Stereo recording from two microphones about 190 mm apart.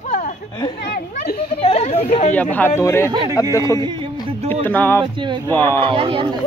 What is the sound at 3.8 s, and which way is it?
Speech, 25° right (ahead or behind).